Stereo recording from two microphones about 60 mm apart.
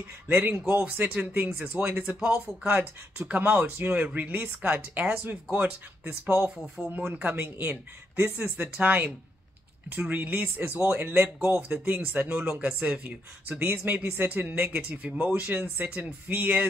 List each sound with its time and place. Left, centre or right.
0.5 s speech: right
6.8 s speech: centre
7.2 s speech: right
14.9 s speech: right